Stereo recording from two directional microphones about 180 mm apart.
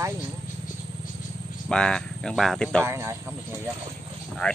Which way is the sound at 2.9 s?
15° right (ahead or behind).